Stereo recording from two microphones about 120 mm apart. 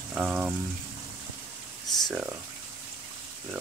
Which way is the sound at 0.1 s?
10° right (ahead or behind).